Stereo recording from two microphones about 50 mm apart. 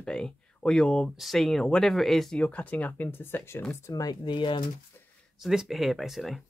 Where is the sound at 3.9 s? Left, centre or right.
Left.